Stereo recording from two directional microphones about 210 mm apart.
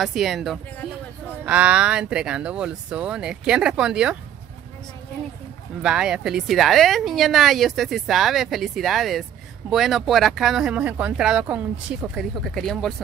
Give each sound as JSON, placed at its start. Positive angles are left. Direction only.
{"t": 0.0, "sound": "speech", "side_deg": 0}
{"t": 5.8, "sound": "speech", "side_deg": -5}